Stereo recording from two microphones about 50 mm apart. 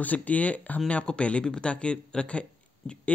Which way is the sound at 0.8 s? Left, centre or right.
Left.